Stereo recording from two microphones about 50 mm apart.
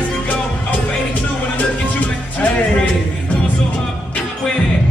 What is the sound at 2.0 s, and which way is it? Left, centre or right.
Music, left.